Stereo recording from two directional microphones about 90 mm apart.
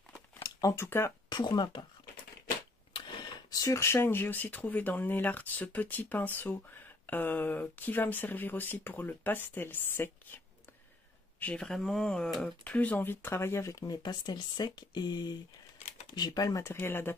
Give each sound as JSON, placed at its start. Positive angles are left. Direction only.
{"t": 0.4, "sound": "a sound", "side_deg": 40}
{"t": 0.7, "sound": "speech", "side_deg": 30}
{"t": 1.3, "sound": "speech", "side_deg": 50}
{"t": 3.4, "sound": "speech", "side_deg": 40}
{"t": 11.6, "sound": "speech", "side_deg": 5}
{"t": 12.6, "sound": "speech", "side_deg": 15}
{"t": 14.0, "sound": "speech", "side_deg": 50}
{"t": 16.7, "sound": "speech", "side_deg": 25}